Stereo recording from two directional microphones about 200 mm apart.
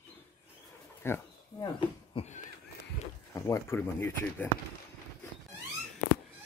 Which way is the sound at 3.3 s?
15° left (ahead or behind).